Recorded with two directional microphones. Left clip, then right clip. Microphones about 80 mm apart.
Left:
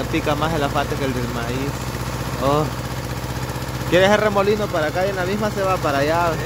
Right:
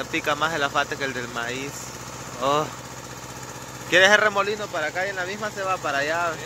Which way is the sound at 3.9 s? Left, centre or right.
Right.